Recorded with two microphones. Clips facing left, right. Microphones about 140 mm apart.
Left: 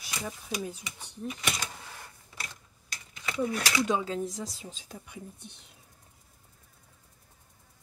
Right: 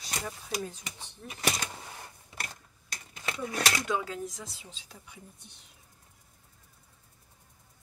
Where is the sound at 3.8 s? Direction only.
25° left (ahead or behind); by 5.2 s 45° left (ahead or behind).